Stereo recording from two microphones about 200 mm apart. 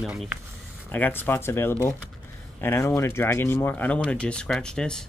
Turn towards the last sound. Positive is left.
turn(degrees=5)  # may be behind; listen again after turning